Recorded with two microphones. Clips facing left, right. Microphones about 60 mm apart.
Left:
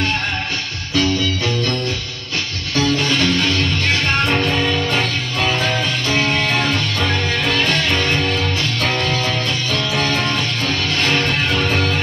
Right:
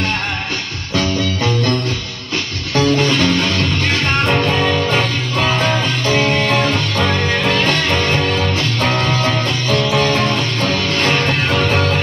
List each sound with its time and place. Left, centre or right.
0.9 s music: right
2.7 s music: right